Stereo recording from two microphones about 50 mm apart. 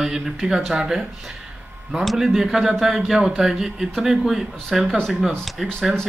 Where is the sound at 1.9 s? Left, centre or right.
Centre.